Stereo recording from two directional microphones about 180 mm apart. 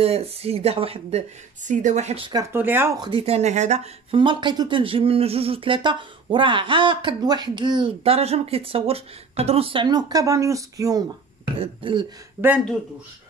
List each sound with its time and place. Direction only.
0.0 s speech: 35° right (ahead or behind)
2.5 s speech: 10° right (ahead or behind)
3.0 s speech: 30° right (ahead or behind)
11.5 s speech: 30° right (ahead or behind)
12.4 s speech: 10° right (ahead or behind)